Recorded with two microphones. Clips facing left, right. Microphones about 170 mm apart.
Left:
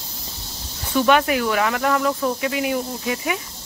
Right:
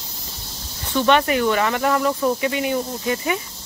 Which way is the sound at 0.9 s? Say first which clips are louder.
Even; 5° left (ahead or behind).